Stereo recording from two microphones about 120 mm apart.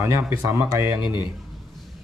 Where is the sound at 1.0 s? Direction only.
40° left (ahead or behind).